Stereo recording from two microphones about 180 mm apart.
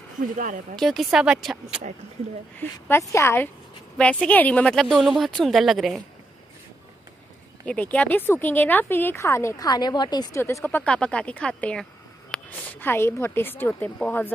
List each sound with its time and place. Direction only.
0.4 s speech: 45° right (ahead or behind)
0.7 s speech: centre (ahead or behind)
2.9 s speech: 15° left (ahead or behind); by 6.0 s centre (ahead or behind)
7.6 s speech: 5° left (ahead or behind)